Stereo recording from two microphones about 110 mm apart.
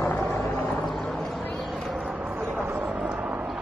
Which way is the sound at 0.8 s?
5° left (ahead or behind).